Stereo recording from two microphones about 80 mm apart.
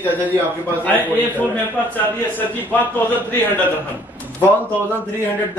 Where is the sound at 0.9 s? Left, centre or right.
Left.